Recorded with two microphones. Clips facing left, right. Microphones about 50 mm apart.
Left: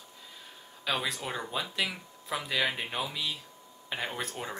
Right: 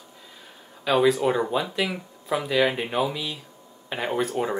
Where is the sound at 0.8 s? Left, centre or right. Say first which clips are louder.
Right 13 dB; centre.